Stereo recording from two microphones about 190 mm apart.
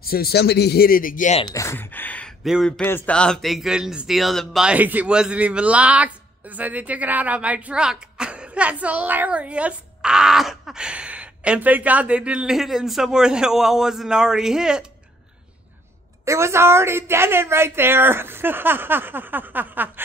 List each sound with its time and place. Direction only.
0.0 s speech: 55° left (ahead or behind)
1.4 s speech: 15° left (ahead or behind); by 14.9 s 5° right (ahead or behind)
16.3 s a woman's voice: 15° right (ahead or behind)